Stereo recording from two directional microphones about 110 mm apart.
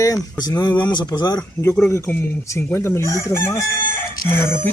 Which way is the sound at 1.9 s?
20° left (ahead or behind).